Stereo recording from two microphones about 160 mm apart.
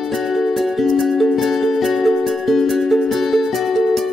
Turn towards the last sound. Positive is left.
turn(degrees=0)  # may be behind; listen again after turning